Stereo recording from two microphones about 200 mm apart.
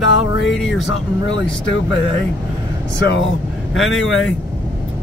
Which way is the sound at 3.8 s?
75° left (ahead or behind).